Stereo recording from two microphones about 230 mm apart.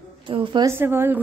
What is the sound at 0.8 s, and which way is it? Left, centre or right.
Speech, centre.